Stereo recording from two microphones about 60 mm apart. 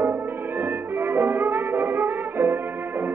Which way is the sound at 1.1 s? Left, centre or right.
Right.